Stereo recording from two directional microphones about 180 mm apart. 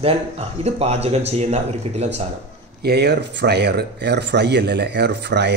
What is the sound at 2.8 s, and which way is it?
Speech, 65° right (ahead or behind).